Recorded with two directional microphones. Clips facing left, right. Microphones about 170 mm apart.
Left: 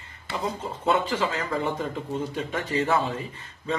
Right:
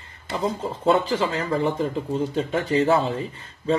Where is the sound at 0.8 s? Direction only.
30° right (ahead or behind).